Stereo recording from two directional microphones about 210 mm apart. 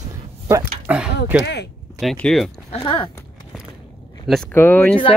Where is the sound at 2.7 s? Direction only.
20° left (ahead or behind).